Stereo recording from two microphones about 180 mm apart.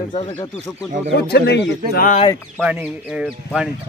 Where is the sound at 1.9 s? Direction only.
55° left (ahead or behind).